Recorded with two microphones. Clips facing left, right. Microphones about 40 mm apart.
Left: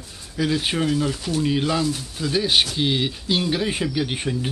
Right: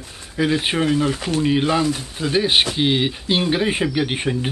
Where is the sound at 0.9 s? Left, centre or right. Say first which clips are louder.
Right 3 dB; right.